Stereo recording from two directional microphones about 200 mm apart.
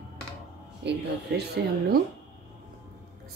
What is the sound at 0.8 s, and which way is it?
Speech, 60° right (ahead or behind).